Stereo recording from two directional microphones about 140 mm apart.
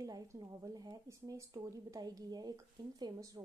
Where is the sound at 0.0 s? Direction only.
25° right (ahead or behind).